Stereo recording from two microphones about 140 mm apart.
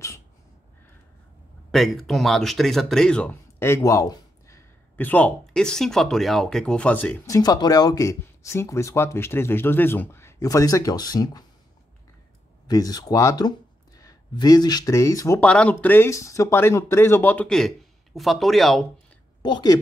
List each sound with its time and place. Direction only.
1.7 s speech: centre (ahead or behind)
7.2 s speech: 25° left (ahead or behind)
12.6 s speech: 25° left (ahead or behind)
15.4 s speech: 10° left (ahead or behind)
19.4 s speech: 30° left (ahead or behind)